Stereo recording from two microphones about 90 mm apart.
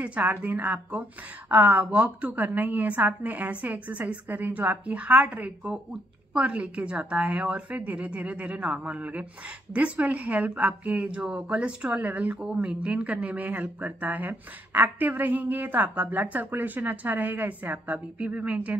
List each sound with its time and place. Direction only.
0.0 s speech: 15° right (ahead or behind)